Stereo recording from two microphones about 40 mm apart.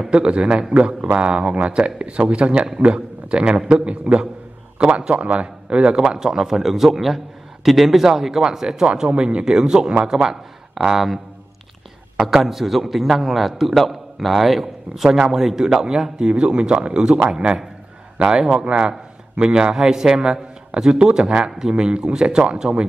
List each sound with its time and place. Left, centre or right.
0.0 s a man's voice: right
10.7 s speech: centre
12.3 s a man's voice: centre; by 22.8 s right